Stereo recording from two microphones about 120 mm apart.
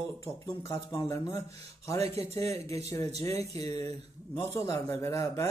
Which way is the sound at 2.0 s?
60° right (ahead or behind).